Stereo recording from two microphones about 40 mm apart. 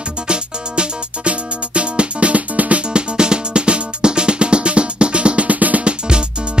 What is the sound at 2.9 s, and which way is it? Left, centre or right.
Music, right.